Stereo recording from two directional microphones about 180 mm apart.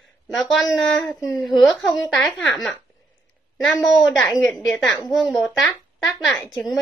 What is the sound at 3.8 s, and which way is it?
A woman's voice, centre (ahead or behind).